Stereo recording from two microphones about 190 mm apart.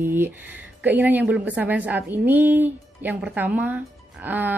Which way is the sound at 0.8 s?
10° right (ahead or behind).